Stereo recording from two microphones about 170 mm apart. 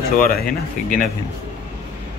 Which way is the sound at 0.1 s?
55° left (ahead or behind).